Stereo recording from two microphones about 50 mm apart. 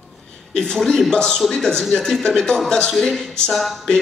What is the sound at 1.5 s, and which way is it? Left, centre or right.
A man's voice, centre.